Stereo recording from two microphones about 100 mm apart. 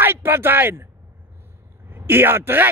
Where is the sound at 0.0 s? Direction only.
25° right (ahead or behind).